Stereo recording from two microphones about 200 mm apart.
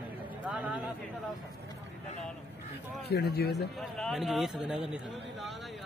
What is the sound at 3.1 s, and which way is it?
Speech, 55° left (ahead or behind).